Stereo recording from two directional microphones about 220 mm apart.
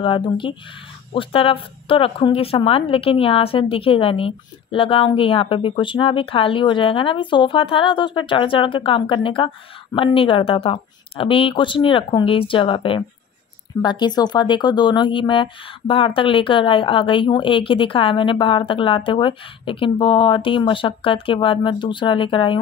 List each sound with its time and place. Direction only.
0.0 s speech: 20° left (ahead or behind)